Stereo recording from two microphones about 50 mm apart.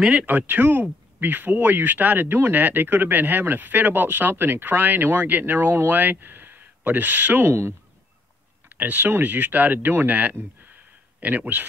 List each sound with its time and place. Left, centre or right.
0.0 s speech: centre
0.3 s speech: right
7.4 s speech: right
8.6 s speech: right
10.7 s a sound: right